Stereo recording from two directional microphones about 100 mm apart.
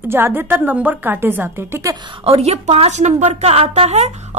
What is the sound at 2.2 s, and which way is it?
A woman's voice, 85° right.